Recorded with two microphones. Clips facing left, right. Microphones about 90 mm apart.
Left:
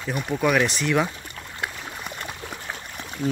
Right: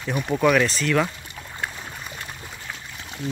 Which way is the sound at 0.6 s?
15° left (ahead or behind).